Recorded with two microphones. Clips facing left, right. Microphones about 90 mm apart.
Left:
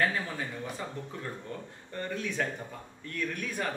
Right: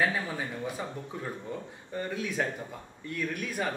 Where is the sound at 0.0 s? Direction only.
10° right (ahead or behind).